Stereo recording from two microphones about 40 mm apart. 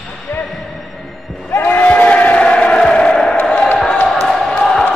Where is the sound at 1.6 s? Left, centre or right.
Left; by 3.4 s centre.